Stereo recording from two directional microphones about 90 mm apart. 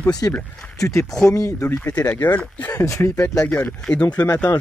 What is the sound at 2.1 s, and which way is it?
Speech, 20° left (ahead or behind).